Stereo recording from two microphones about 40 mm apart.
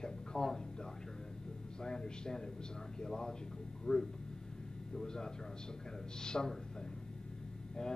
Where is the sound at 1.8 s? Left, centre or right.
Centre.